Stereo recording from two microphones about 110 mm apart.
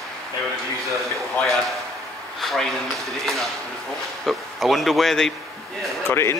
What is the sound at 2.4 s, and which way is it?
Speech, centre (ahead or behind).